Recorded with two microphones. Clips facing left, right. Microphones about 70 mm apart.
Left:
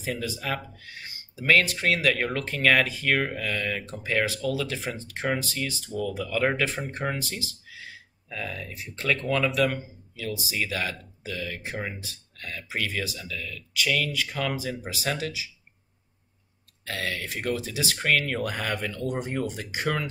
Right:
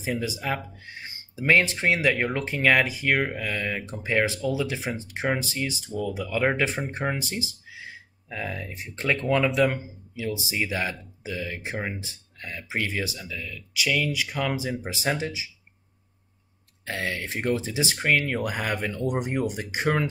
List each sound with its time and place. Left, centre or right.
0.2 s speech: centre
5.9 s speech: centre; by 15.4 s right
16.8 s speech: right
17.9 s speech: centre